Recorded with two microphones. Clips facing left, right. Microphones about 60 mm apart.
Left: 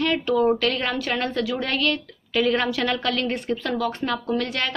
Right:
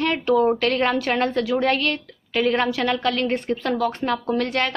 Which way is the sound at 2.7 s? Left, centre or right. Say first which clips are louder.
Right 2 dB; centre.